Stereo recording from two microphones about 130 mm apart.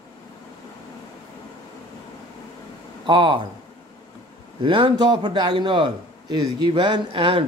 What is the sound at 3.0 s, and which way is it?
Speech, 40° right (ahead or behind).